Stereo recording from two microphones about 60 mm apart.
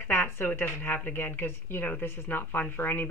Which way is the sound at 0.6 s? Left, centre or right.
Left.